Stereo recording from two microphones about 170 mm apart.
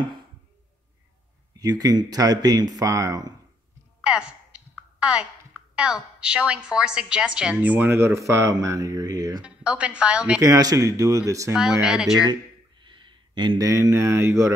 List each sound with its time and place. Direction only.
1.6 s speech: 20° right (ahead or behind)
4.0 s a sound: 5° right (ahead or behind)
5.0 s a woman's voice: 5° right (ahead or behind)
9.4 s a woman's voice: 5° right (ahead or behind)
10.4 s speech: 20° right (ahead or behind)
11.5 s speech: 5° right (ahead or behind)
12.8 s speech: 30° right (ahead or behind)